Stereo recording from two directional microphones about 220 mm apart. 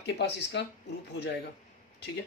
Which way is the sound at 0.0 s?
50° left (ahead or behind).